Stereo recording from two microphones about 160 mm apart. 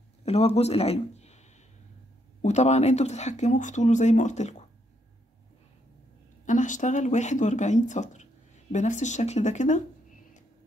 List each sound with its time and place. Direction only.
0.2 s speech: 40° left (ahead or behind)
6.4 s speech: 50° left (ahead or behind)